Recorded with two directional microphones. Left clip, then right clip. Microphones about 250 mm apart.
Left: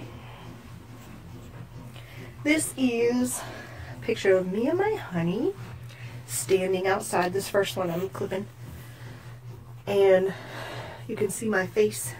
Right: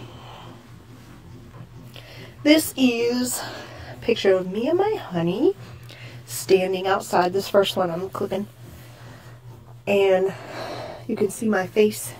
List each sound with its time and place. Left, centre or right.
2.0 s a woman's voice: right
9.8 s speech: centre